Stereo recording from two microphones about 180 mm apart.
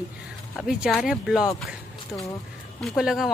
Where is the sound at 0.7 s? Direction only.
Centre (ahead or behind).